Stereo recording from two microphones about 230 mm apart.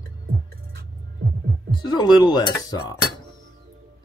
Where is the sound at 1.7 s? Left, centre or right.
Centre.